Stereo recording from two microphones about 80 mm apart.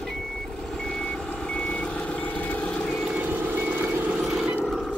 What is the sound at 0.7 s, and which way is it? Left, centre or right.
Vehicle, centre.